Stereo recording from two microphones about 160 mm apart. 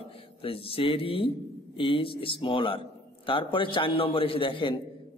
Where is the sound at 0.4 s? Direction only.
35° left (ahead or behind).